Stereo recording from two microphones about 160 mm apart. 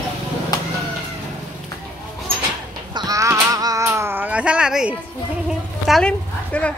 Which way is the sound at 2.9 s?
25° right (ahead or behind).